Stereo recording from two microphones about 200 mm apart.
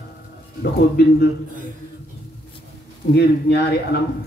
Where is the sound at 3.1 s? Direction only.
55° left (ahead or behind).